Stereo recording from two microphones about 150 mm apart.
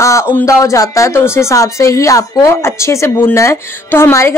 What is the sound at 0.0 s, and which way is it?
Speech, 20° left (ahead or behind).